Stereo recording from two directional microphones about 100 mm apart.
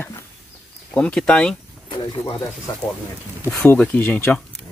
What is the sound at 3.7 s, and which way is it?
Speech, 15° left (ahead or behind).